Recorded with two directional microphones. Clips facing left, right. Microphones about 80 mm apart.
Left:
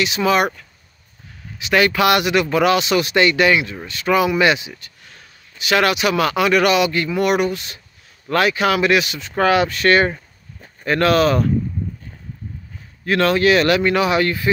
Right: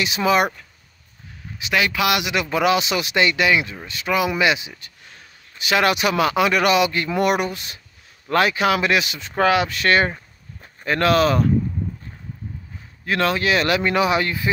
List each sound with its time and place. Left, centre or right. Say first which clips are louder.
0.0 s speech: left 1 dB; centre
1.7 s speech: left 5 dB; centre
2.5 s speech: left 1 dB; centre
5.7 s speech: left 2 dB; right
13.0 s speech: left 5 dB; centre